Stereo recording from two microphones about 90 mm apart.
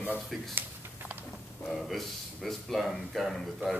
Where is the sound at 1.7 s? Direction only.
Centre (ahead or behind).